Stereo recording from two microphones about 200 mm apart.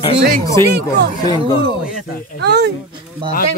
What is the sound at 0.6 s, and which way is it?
Speech, 10° left (ahead or behind).